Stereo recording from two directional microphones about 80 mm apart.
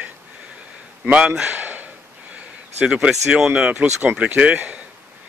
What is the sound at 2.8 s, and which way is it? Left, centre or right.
Speech, centre.